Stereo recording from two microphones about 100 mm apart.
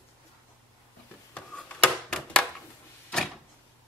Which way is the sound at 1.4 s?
10° left (ahead or behind).